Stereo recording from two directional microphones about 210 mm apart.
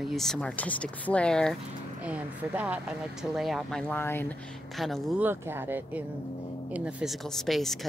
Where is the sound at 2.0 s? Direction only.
5° right (ahead or behind).